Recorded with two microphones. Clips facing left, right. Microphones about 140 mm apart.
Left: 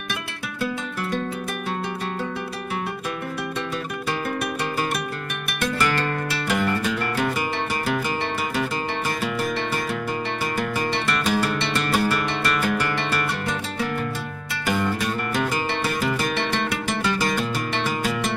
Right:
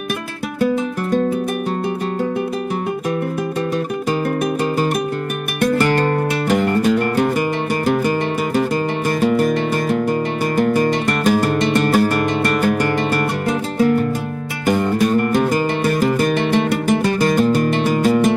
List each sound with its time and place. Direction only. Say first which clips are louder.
5.6 s music: right 8 dB; 45° right (ahead or behind)
9.2 s music: right 10 dB; 45° right (ahead or behind)